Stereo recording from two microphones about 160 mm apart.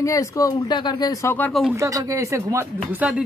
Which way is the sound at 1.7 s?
20° right (ahead or behind).